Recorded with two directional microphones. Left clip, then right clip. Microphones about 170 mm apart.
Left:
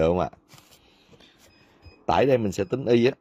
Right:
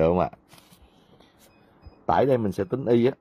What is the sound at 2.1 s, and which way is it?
Speech, 20° left (ahead or behind).